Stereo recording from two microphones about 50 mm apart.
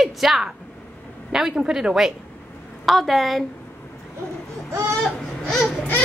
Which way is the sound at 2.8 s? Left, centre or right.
Centre.